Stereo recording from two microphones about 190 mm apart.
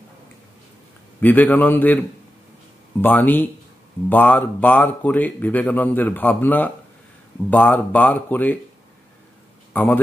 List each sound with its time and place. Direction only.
1.2 s speech: 10° left (ahead or behind)